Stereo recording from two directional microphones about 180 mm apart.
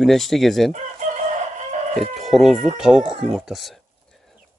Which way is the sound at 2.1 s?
Centre (ahead or behind).